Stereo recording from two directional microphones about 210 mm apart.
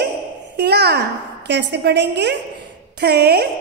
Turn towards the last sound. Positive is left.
turn(degrees=-50)  # may be behind; listen again after turning